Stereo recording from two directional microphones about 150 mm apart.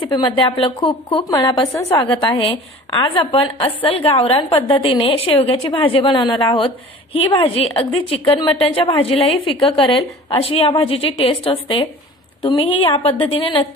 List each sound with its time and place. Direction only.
0.0 s a woman's voice: 30° left (ahead or behind)